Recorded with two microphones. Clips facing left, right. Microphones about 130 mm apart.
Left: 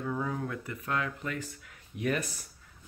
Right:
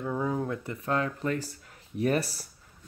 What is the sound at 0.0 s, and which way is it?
Speech, 20° right (ahead or behind).